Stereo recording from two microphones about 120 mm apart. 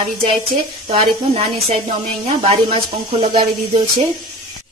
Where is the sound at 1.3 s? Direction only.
55° right (ahead or behind).